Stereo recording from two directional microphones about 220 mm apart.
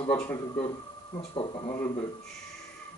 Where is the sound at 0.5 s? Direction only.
25° left (ahead or behind).